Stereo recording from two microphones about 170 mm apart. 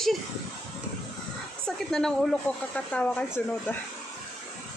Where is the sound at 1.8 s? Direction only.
5° left (ahead or behind).